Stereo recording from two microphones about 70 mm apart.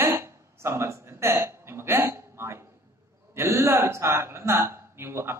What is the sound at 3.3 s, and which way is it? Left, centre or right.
A man's voice, right.